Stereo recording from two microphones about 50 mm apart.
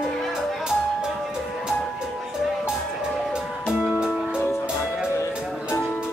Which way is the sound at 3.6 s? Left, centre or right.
Centre.